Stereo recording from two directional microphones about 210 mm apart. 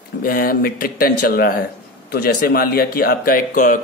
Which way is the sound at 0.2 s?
45° left (ahead or behind).